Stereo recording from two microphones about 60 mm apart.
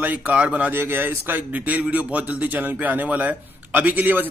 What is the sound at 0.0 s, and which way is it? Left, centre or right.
Speech, right.